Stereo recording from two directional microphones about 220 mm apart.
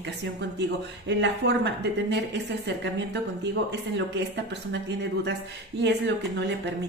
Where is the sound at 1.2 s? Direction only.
50° right (ahead or behind).